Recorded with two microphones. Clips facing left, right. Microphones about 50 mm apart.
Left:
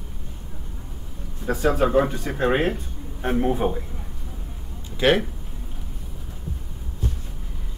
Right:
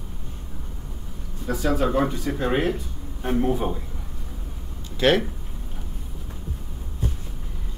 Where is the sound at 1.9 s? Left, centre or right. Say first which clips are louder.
Left 2 dB; centre.